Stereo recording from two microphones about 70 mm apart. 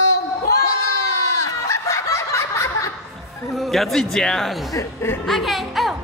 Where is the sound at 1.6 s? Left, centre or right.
Left.